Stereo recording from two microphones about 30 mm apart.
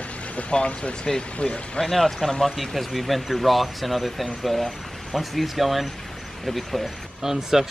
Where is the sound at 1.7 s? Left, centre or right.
Centre.